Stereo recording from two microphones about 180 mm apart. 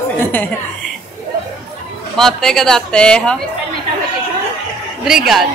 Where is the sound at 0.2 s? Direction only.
10° left (ahead or behind).